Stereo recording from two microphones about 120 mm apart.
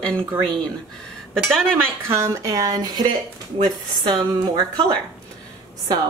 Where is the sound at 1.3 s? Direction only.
5° left (ahead or behind).